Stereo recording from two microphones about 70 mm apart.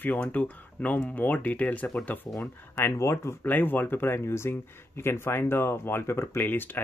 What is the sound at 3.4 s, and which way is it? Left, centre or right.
Speech, left.